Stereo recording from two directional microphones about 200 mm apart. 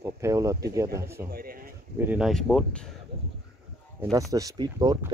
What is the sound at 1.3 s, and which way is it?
Speech, 50° right (ahead or behind).